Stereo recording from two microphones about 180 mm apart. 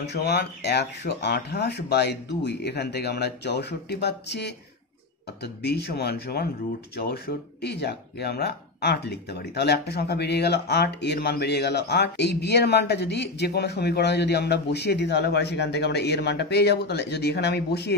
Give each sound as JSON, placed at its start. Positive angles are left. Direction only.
{"t": 0.0, "sound": "speech", "side_deg": 70}